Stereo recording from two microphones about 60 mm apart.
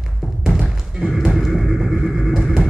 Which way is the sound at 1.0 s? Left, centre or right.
Centre.